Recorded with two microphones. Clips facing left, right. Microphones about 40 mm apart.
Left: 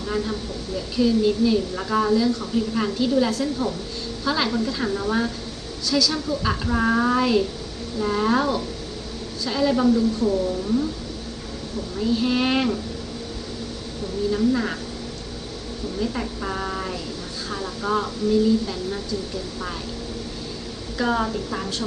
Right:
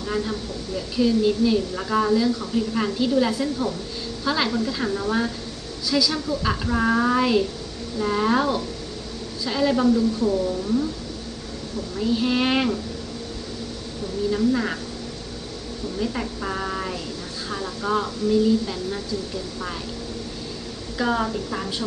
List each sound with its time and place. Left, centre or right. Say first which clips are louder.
0.1 s a woman's voice: even; centre
12.0 s speech: even; centre
14.3 s a woman's voice: even; centre
16.0 s a woman's voice: even; centre
21.0 s a woman's voice: even; centre